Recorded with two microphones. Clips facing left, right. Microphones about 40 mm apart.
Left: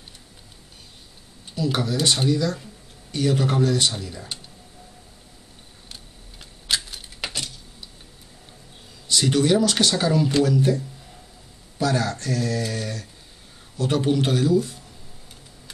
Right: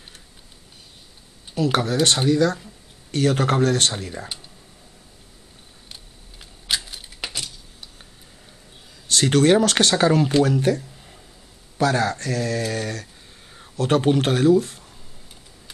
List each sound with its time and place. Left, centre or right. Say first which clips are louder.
1.6 s speech: right 4 dB; right
6.7 s a sound: even; centre
9.0 s speech: right 3 dB; right
11.8 s speech: right 3 dB; right